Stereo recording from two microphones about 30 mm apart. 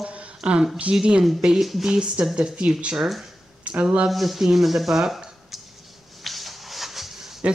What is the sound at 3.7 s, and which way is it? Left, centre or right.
Speech, right.